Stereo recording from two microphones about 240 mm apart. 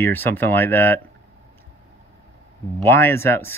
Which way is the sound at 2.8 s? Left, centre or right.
Centre.